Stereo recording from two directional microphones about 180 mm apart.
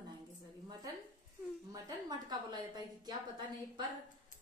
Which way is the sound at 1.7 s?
20° right (ahead or behind).